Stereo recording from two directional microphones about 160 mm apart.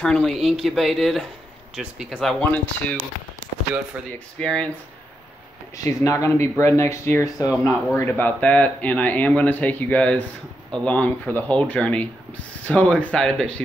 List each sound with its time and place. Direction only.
0.0 s speech: 5° left (ahead or behind)
3.9 s speech: 10° right (ahead or behind)
4.4 s speech: 5° left (ahead or behind)
5.9 s speech: 20° left (ahead or behind); by 13.6 s 5° left (ahead or behind)